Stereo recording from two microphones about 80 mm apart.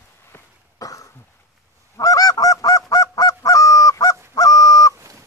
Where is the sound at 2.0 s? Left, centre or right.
Left.